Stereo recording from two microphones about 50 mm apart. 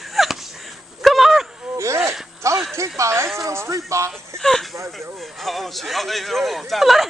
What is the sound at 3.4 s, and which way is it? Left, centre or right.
Music, right.